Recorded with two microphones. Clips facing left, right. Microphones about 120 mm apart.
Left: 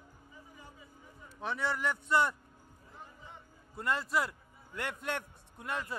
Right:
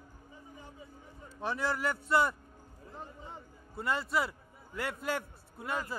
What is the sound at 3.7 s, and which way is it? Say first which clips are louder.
A man's voice: even; centre (ahead or behind).